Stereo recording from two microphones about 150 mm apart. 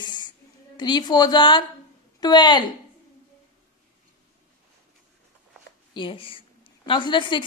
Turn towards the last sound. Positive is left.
turn(degrees=30)  # may be behind; listen again after turning